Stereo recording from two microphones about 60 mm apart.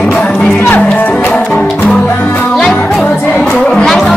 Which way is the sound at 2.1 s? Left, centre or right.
Left.